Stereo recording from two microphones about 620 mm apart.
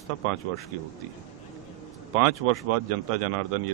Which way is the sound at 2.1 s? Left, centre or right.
Right.